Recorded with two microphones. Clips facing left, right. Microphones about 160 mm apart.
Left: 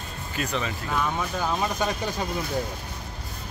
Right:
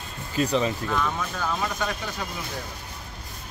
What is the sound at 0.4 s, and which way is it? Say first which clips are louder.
Speech: right 6 dB; 30° right (ahead or behind).